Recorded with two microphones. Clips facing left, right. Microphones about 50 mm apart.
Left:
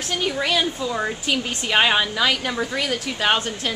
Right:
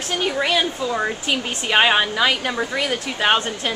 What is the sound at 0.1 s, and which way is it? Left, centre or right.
A woman's voice, centre.